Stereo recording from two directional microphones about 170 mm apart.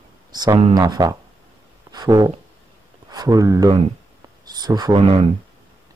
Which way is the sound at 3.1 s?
20° right (ahead or behind).